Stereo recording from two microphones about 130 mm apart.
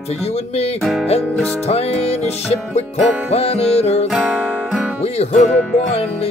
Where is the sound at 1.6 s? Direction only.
55° left (ahead or behind).